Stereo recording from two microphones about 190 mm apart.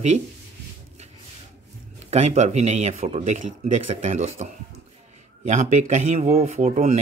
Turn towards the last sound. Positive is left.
turn(degrees=-40)  # may be behind; listen again after turning